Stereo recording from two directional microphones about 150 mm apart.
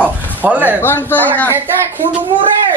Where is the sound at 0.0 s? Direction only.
10° right (ahead or behind).